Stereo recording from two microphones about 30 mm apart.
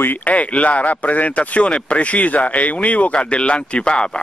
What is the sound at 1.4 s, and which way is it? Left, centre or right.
Speech, left.